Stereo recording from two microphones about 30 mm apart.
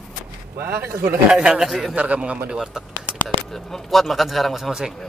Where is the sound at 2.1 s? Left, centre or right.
Right.